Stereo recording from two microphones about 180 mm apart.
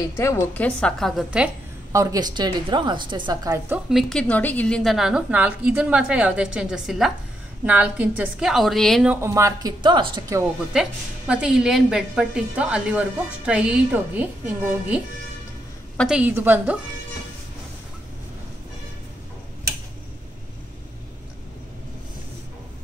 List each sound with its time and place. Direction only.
0.1 s a woman's voice: 15° left (ahead or behind); by 1.5 s 5° right (ahead or behind)
1.9 s a woman's voice: 15° right (ahead or behind)
3.5 s a woman's voice: 15° right (ahead or behind)
3.9 s a woman's voice: 5° left (ahead or behind)
9.1 s a woman's voice: 15° right (ahead or behind)
10.7 s a woman's voice: 5° right (ahead or behind)
16.0 s a woman's voice: 5° right (ahead or behind)